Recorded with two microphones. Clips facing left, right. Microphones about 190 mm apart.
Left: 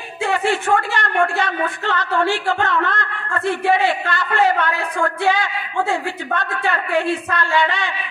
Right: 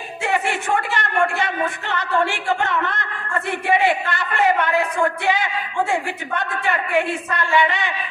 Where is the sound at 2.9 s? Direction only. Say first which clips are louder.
Left 2 dB; 20° right (ahead or behind).